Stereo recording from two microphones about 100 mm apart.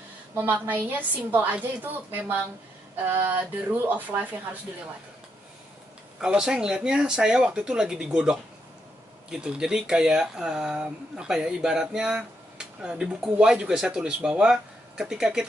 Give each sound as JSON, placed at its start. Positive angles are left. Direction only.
{"t": 0.3, "sound": "a woman's voice", "side_deg": -20}
{"t": 6.2, "sound": "speech", "side_deg": -5}